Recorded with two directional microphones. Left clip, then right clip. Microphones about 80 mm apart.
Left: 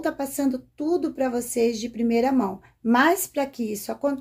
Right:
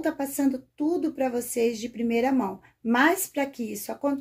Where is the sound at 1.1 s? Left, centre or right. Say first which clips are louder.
Left 2 dB; left.